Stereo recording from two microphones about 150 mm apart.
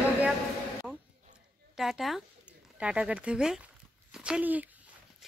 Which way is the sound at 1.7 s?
Centre (ahead or behind).